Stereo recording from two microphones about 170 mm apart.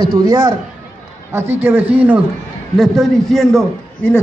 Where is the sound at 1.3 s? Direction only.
15° right (ahead or behind); by 4.2 s 5° left (ahead or behind).